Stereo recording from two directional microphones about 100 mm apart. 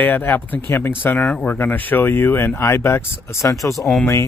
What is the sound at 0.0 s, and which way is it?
Speech, 20° left (ahead or behind).